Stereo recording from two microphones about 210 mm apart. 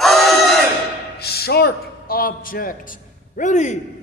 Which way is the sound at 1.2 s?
50° left (ahead or behind).